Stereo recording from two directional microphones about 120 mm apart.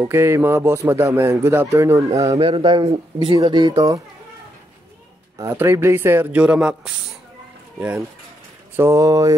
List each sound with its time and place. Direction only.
0.0 s speech: 20° right (ahead or behind)
2.3 s speech: 50° right (ahead or behind); by 4.0 s 30° right (ahead or behind)
5.5 s speech: 20° right (ahead or behind)
8.7 s speech: 25° right (ahead or behind)